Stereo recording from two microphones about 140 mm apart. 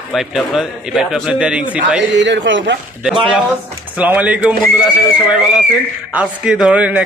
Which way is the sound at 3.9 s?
10° right (ahead or behind).